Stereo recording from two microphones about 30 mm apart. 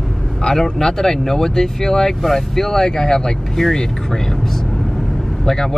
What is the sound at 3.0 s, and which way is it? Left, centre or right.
Speech, left.